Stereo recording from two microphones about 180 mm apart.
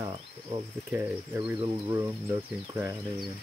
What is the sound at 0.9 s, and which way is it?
Speech, 10° right (ahead or behind).